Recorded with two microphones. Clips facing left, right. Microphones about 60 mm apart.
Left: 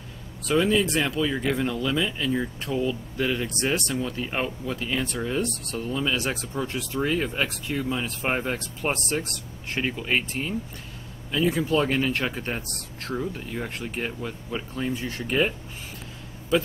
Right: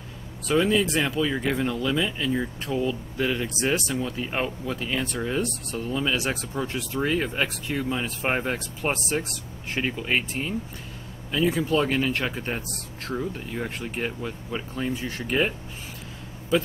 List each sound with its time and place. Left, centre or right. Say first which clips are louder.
0.5 s speech: even; centre